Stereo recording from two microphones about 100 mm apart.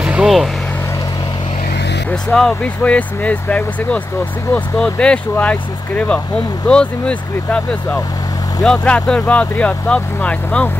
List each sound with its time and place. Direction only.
0.0 s vehicle: 10° right (ahead or behind)
2.3 s speech: 10° left (ahead or behind)